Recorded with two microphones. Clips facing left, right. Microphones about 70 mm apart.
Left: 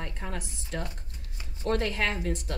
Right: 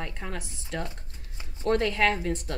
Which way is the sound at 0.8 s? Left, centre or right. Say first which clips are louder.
Right 2 dB; right.